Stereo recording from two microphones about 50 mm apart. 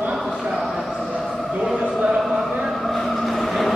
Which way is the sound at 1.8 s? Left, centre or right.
Centre.